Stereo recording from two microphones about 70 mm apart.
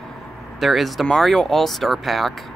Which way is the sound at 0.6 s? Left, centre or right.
Centre.